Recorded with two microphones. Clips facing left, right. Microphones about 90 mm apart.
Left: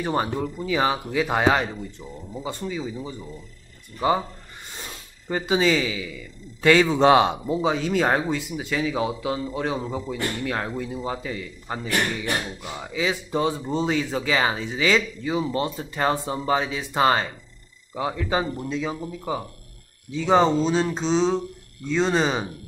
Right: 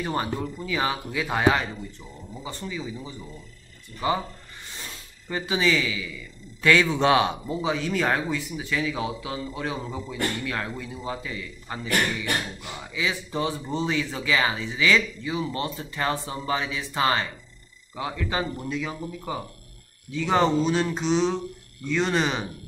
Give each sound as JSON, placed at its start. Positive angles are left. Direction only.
{"t": 0.0, "sound": "speech", "side_deg": 20}
{"t": 4.7, "sound": "a sound", "side_deg": 20}
{"t": 5.5, "sound": "a man's voice", "side_deg": 25}
{"t": 12.3, "sound": "beatboxing", "side_deg": 5}
{"t": 12.8, "sound": "speech", "side_deg": 30}
{"t": 20.1, "sound": "speech", "side_deg": 25}